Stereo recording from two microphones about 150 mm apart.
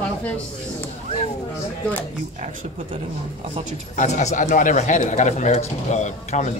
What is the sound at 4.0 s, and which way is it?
Speech, 55° left (ahead or behind).